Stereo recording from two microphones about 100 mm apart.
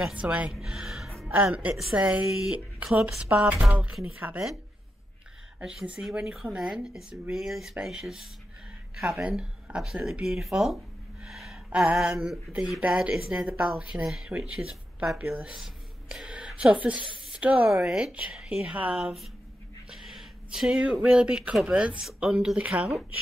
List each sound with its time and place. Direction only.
0.0 s a woman's voice: 15° right (ahead or behind)
1.3 s speech: 15° right (ahead or behind)
2.2 s speech: 5° right (ahead or behind)
5.6 s speech: 5° right (ahead or behind)
9.3 s a woman's voice: 10° right (ahead or behind)